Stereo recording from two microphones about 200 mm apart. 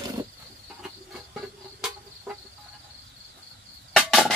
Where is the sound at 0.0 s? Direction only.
20° right (ahead or behind).